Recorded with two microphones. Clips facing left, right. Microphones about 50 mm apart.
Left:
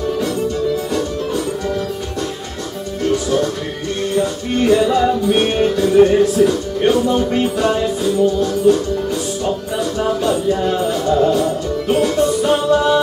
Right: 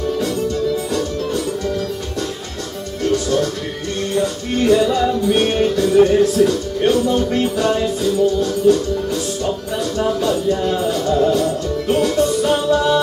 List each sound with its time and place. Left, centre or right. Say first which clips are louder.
3.0 s music: left 1 dB; centre